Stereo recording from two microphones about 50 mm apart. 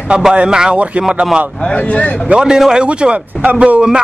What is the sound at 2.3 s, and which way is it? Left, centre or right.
Speech, centre.